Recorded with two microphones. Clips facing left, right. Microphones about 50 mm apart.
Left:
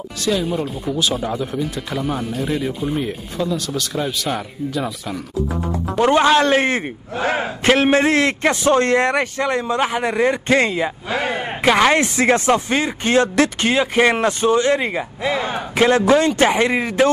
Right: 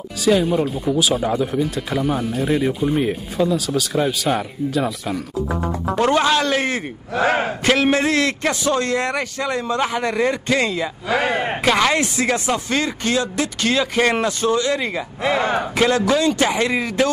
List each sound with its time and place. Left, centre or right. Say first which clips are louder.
0.2 s speech: right 4 dB; centre
5.5 s speech: right 1 dB; right
5.9 s speech: left 3 dB; centre
6.4 s a man's voice: left 4 dB; left
9.7 s speech: left 1 dB; left
11.1 s a man's voice: right 3 dB; right
11.6 s speech: left 4 dB; centre
11.9 s a man's voice: left 4 dB; left
12.6 s speech: left 1 dB; left
15.2 s speech: right 3 dB; centre
16.3 s speech: left 3 dB; left